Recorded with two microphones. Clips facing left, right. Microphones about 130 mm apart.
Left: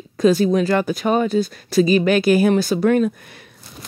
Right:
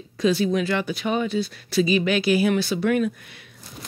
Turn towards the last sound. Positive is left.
turn(degrees=40)  # may be behind; listen again after turning